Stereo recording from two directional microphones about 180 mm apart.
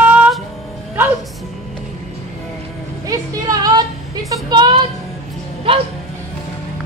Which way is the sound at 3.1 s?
20° right (ahead or behind).